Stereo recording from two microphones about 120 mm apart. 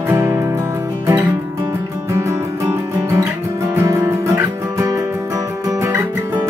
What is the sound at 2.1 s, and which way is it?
Music, 25° right (ahead or behind).